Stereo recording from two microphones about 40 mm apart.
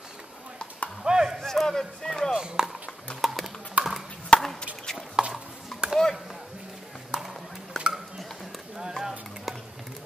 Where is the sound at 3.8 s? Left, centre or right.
Right.